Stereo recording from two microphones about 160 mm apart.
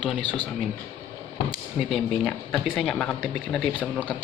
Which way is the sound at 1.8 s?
Centre (ahead or behind).